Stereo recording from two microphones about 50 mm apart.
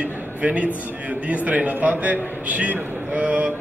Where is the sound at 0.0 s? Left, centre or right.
Right.